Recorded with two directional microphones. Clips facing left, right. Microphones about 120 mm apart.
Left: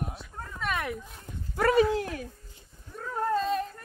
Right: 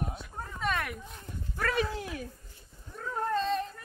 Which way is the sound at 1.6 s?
90° left.